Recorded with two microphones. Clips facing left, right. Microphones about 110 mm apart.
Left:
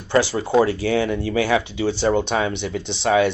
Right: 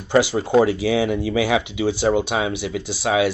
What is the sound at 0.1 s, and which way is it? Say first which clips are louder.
Speech: right 1 dB; 15° right (ahead or behind).